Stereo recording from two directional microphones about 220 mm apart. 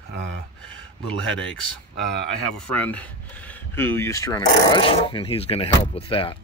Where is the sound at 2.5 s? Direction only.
5° left (ahead or behind).